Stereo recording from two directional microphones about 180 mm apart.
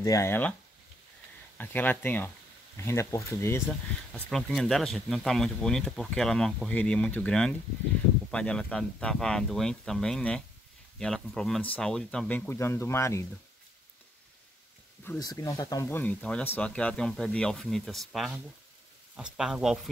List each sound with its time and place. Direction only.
0.0 s speech: 15° left (ahead or behind)
1.6 s speech: 10° left (ahead or behind)
15.1 s speech: 20° left (ahead or behind); by 19.8 s 5° right (ahead or behind)